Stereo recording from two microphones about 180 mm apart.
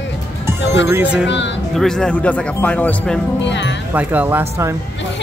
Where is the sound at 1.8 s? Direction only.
5° left (ahead or behind).